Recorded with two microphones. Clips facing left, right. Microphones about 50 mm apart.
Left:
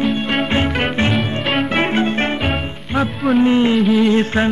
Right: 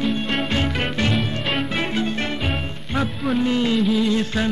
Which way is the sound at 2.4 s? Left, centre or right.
Centre.